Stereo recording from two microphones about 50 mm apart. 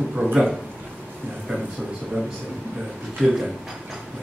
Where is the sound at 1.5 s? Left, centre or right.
Centre.